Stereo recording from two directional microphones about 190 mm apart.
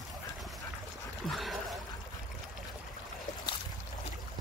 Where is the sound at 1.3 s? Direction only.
Centre (ahead or behind).